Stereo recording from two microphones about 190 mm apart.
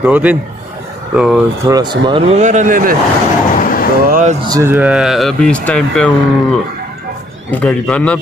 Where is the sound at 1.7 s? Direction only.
20° right (ahead or behind); by 3.0 s 45° right (ahead or behind).